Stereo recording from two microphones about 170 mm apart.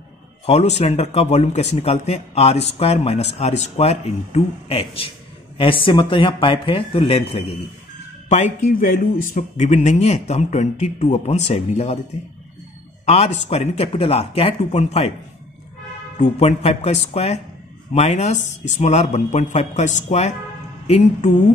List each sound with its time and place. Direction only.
0.5 s speech: 40° left (ahead or behind)
8.3 s a man's voice: 45° left (ahead or behind)
13.0 s speech: 40° left (ahead or behind)
16.2 s a man's voice: 40° left (ahead or behind)
20.8 s music: 40° left (ahead or behind)